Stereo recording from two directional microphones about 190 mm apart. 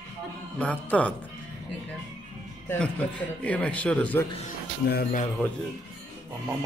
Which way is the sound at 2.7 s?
5° left (ahead or behind).